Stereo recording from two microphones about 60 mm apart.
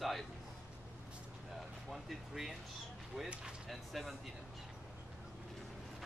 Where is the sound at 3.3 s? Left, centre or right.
Centre.